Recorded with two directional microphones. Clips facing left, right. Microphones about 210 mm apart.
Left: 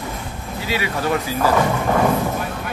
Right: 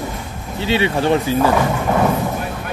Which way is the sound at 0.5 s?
25° right (ahead or behind).